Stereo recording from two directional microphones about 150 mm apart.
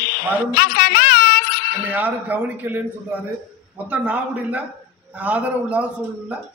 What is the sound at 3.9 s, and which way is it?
A man's voice, 10° right (ahead or behind).